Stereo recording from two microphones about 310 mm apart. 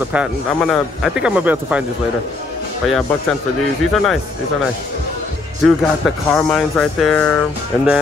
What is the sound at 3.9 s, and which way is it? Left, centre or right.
Speech, centre.